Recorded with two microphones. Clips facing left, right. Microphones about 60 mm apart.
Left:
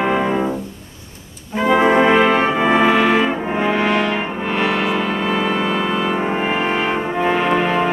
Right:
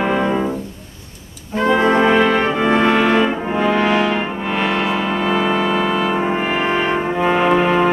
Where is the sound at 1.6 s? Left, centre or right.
Centre.